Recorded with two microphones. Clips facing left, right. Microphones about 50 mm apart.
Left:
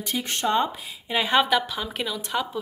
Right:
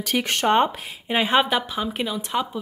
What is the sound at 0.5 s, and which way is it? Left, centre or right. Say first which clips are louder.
Speech: right 4 dB; right.